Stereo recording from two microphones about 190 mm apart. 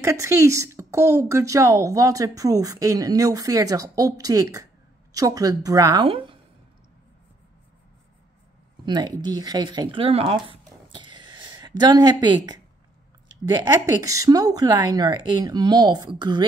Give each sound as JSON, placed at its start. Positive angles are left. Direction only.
{"t": 0.0, "sound": "a woman's voice", "side_deg": -15}
{"t": 8.8, "sound": "a woman's voice", "side_deg": -20}
{"t": 10.5, "sound": "a sound", "side_deg": -25}
{"t": 13.6, "sound": "a woman's voice", "side_deg": -20}